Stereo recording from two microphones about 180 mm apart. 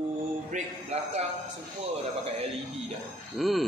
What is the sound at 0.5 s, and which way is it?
Speech, 45° right (ahead or behind).